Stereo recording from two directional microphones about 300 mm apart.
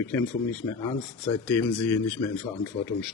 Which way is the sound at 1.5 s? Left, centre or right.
Centre.